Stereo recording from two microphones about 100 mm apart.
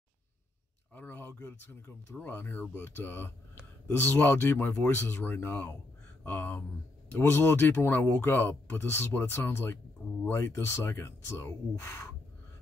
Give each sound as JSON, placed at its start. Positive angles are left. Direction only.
{"t": 0.9, "sound": "speech", "side_deg": 20}